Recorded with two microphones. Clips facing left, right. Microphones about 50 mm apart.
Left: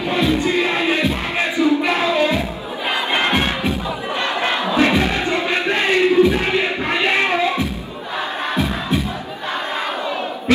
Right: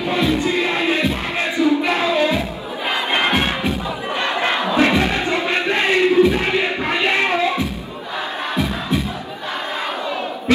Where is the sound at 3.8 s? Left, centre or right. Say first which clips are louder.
Even; right.